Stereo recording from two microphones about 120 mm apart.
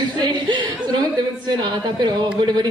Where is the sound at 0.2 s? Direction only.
35° right (ahead or behind).